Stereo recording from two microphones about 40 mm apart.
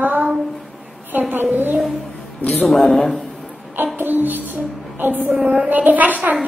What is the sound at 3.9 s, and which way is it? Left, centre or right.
Music, right.